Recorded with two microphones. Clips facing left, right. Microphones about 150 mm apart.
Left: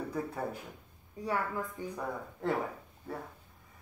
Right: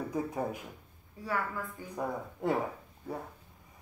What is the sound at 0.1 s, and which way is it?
Speech, 15° right (ahead or behind).